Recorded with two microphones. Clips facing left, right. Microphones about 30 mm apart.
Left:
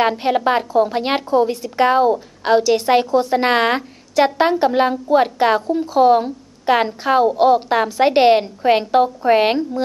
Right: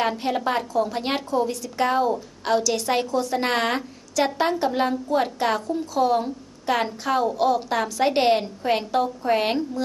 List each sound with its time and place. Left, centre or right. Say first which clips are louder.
0.2 s a woman's voice: left 7 dB; left